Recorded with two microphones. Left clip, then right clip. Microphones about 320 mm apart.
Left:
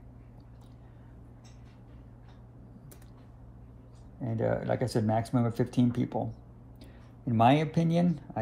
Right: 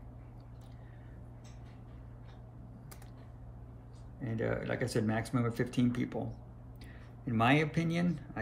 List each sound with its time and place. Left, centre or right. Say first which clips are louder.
4.2 s speech: left 5 dB; centre
7.2 s speech: left 5 dB; centre